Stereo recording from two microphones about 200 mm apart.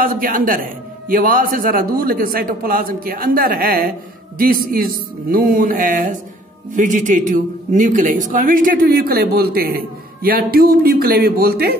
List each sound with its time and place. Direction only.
0.0 s speech: 45° right (ahead or behind)